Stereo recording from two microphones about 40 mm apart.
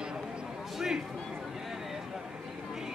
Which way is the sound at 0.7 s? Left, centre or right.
Centre.